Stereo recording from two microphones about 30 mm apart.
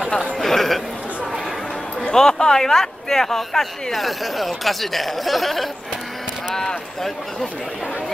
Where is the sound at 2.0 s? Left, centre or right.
Left.